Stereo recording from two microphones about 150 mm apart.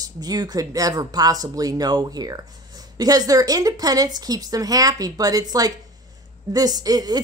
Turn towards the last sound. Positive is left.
turn(degrees=-25)  # may be behind; listen again after turning